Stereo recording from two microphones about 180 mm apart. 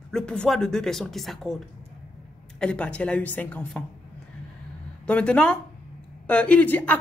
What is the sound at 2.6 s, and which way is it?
Speech, 5° left (ahead or behind).